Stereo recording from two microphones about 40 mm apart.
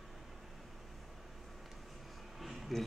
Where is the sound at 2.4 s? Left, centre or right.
Centre.